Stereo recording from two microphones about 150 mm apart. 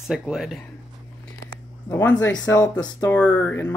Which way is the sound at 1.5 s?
20° left (ahead or behind).